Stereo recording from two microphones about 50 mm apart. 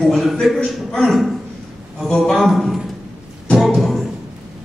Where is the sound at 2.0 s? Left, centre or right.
Centre.